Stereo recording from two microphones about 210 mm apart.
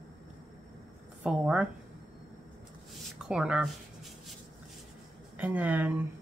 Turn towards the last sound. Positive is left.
turn(degrees=-5)  # may be behind; listen again after turning